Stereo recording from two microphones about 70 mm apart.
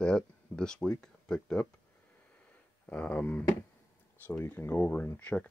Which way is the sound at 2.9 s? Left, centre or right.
Centre.